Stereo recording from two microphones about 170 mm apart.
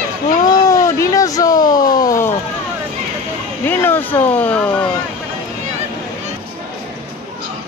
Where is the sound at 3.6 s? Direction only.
10° left (ahead or behind).